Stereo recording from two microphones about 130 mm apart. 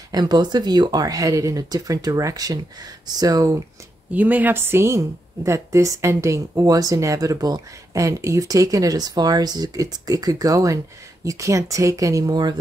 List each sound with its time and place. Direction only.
0.1 s a woman's voice: 35° right (ahead or behind)
4.1 s a woman's voice: 15° right (ahead or behind); by 12.5 s 30° right (ahead or behind)